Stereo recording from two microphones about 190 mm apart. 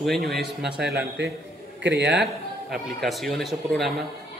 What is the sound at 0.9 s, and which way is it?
A man's voice, 65° right (ahead or behind).